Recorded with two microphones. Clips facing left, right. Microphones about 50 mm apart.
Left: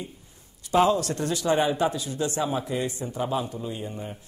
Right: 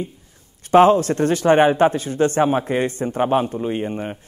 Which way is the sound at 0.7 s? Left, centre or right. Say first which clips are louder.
Right 9 dB; right.